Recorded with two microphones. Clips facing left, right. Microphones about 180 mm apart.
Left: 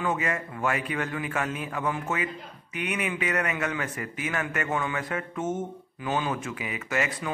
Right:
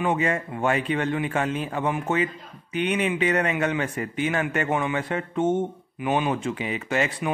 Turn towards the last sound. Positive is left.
turn(degrees=-30)  # may be behind; listen again after turning